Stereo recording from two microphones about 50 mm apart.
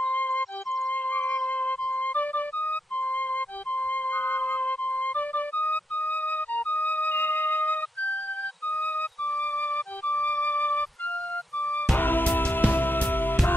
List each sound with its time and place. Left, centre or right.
0.0 s music: left
1.5 s music: left
3.0 s music: left
9.4 s music: centre
12.0 s music: left